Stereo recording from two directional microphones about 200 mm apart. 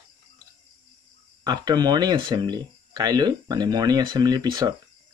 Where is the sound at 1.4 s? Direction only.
20° right (ahead or behind).